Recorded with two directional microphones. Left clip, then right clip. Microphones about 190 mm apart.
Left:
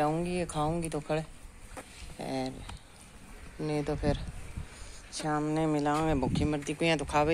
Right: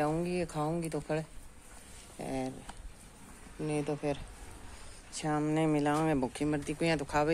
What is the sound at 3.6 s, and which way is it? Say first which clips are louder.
Speech: left 2 dB; 10° left (ahead or behind).